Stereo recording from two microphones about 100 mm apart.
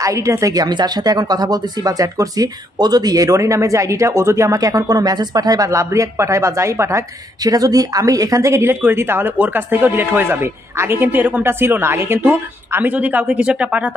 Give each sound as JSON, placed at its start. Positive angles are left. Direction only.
{"t": 0.0, "sound": "speech", "side_deg": -30}